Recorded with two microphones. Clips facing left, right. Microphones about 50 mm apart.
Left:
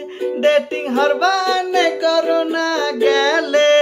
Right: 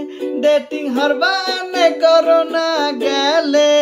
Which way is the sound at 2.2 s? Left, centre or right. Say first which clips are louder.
Right 4 dB; centre.